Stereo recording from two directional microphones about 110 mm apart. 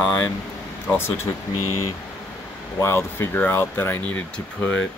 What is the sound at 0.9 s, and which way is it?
Speech, 20° left (ahead or behind).